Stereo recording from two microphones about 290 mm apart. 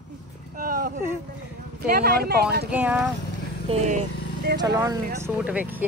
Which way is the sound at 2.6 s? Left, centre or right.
Centre.